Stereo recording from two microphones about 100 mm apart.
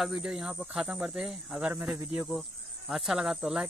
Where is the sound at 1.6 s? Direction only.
15° right (ahead or behind).